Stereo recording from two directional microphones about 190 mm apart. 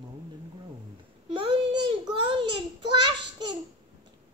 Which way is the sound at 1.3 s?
25° right (ahead or behind).